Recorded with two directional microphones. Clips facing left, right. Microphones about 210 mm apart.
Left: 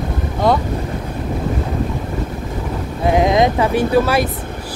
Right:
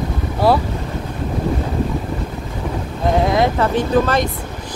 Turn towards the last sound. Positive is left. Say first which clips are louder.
# left 1 dB
turn(degrees=10)  # may be behind; listen again after turning